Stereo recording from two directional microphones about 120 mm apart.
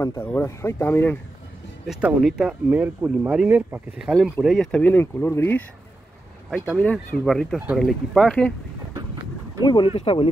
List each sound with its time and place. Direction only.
0.0 s speech: 20° left (ahead or behind)
1.9 s speech: 5° right (ahead or behind)
4.1 s speech: centre (ahead or behind)
4.6 s speech: 10° left (ahead or behind)
6.8 s speech: 10° left (ahead or behind)
7.2 s speech: centre (ahead or behind)
9.6 s speech: 40° left (ahead or behind)
9.9 s speech: 50° left (ahead or behind)